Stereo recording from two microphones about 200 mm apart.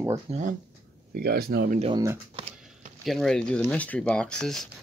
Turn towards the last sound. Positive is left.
turn(degrees=5)  # may be behind; listen again after turning